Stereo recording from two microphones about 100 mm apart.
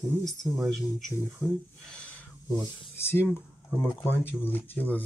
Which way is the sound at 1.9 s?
10° left (ahead or behind).